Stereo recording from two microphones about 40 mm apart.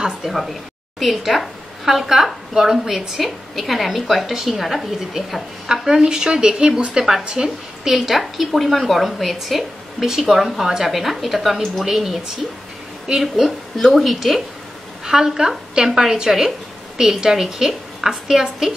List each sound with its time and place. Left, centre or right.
0.2 s a woman's voice: centre
8.2 s speech: centre
13.1 s a woman's voice: centre
13.9 s speech: centre
15.0 s a woman's voice: centre